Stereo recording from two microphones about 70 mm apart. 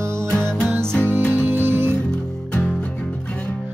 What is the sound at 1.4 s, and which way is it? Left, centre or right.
Music, right.